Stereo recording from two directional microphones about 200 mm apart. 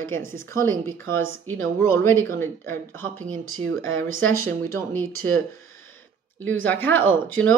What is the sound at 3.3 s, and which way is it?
Speech, 90° right.